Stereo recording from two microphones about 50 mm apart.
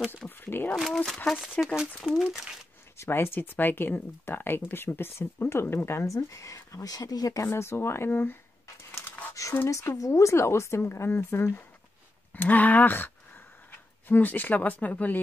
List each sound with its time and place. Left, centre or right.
0.4 s speech: left
0.8 s speech: centre
1.6 s speech: centre
2.2 s speech: centre
3.0 s speech: left
7.3 s speech: left
8.1 s speech: left
9.3 s a sound: left
9.7 s speech: left
12.4 s speech: left